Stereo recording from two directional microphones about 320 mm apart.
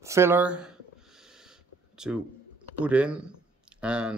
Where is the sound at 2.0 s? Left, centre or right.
Centre.